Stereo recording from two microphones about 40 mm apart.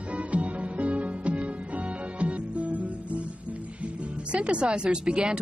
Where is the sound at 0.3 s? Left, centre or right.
Right.